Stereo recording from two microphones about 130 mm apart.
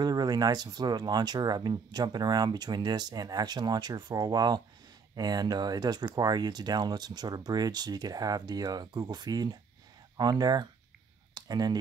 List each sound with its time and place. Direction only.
0.0 s speech: 30° right (ahead or behind)